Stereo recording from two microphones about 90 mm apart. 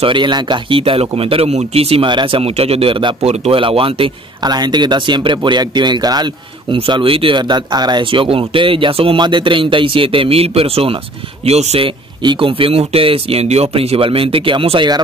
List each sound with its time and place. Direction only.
0.0 s speech: 60° right (ahead or behind); by 4.1 s 90° right
4.4 s speech: 50° right (ahead or behind)
6.7 s speech: 70° right (ahead or behind); by 11.0 s 90° right
11.7 s speech: 70° right (ahead or behind)